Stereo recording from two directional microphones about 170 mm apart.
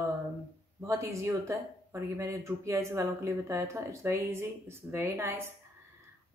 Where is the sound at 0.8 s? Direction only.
15° right (ahead or behind).